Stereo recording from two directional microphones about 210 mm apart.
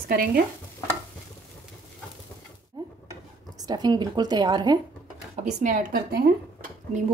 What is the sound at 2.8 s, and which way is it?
Dishes, 20° right (ahead or behind).